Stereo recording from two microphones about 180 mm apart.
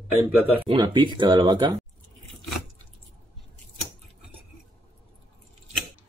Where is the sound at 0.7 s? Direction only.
25° right (ahead or behind).